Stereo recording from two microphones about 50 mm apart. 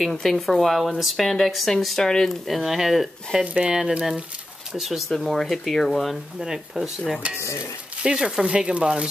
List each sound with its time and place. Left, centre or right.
0.0 s speech: centre
2.4 s speech: centre
3.5 s speech: centre
4.7 s speech: centre
6.4 s speech: centre
8.0 s speech: centre